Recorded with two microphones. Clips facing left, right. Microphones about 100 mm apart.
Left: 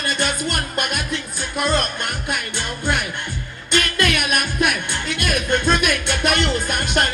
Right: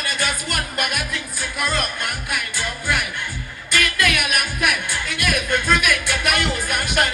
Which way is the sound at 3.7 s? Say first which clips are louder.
Left 1 dB; 25° left (ahead or behind).